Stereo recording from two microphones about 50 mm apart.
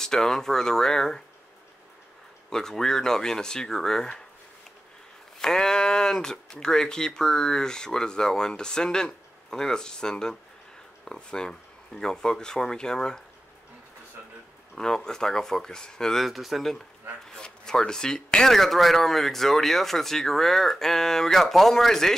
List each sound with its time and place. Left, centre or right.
0.0 s speech: centre
2.5 s speech: centre
5.4 s speech: centre
14.8 s speech: centre
16.3 s speech: centre
17.4 s speech: centre